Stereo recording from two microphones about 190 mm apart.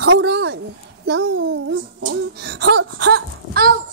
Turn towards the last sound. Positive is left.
turn(degrees=-55)  # may be behind; listen again after turning